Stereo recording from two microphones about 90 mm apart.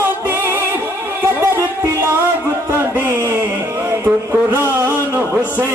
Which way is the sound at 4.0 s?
25° right (ahead or behind).